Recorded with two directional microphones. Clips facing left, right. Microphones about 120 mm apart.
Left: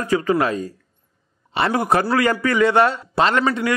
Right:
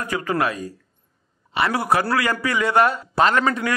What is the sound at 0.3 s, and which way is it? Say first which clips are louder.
A man's voice: left 4 dB; 30° left (ahead or behind).